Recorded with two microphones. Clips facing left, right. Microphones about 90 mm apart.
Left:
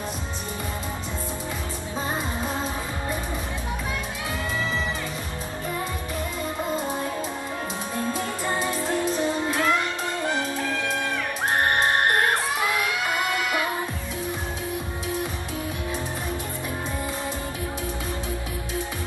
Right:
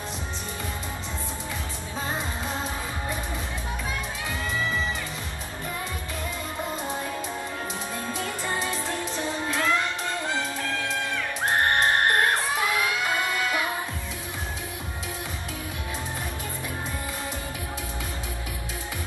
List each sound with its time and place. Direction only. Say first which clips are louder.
9.1 s music: left 4 dB; 15° left (ahead or behind)